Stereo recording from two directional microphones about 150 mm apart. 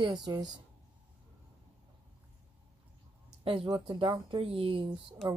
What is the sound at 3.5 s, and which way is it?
Speech, 35° right (ahead or behind).